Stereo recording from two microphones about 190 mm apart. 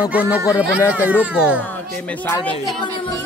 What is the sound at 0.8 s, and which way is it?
Speech, 15° left (ahead or behind).